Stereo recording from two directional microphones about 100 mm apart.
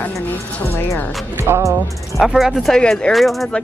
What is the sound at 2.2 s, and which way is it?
Speech, 5° right (ahead or behind).